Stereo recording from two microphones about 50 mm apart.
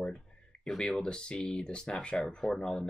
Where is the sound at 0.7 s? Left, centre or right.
Centre.